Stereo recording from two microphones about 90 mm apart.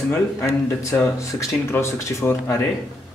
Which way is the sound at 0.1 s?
25° left (ahead or behind).